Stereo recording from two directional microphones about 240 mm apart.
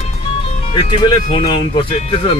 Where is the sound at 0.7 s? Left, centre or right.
Centre.